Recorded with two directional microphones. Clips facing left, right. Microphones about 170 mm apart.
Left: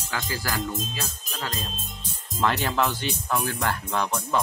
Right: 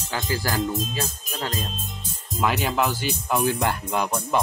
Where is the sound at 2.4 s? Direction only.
10° right (ahead or behind).